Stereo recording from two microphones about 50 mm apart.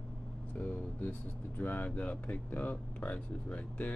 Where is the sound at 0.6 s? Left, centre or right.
Left.